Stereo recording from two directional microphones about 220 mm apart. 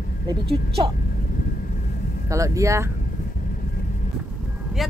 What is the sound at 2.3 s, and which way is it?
Speech, 15° right (ahead or behind).